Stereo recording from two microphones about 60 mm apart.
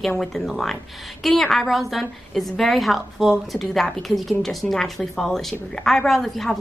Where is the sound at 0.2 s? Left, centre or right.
Centre.